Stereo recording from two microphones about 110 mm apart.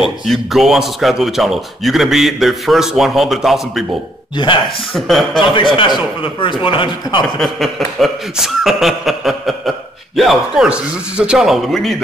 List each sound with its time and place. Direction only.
0.0 s speech: centre (ahead or behind)
4.9 s speech: centre (ahead or behind)
5.5 s speech: 50° left (ahead or behind)
7.3 s speech: centre (ahead or behind)